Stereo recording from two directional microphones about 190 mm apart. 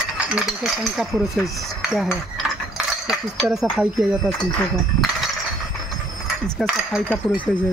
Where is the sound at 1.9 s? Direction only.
Centre (ahead or behind).